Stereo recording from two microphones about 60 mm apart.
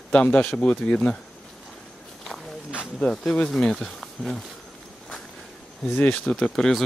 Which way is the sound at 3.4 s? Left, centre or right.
Centre.